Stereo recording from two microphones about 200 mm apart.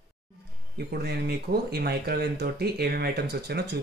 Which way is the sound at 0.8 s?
50° right (ahead or behind).